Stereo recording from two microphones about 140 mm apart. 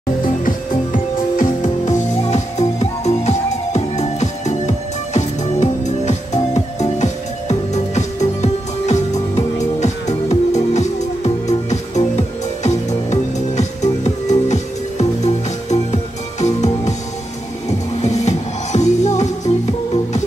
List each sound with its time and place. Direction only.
0.5 s music: 75° left (ahead or behind); by 19.5 s 55° left (ahead or behind)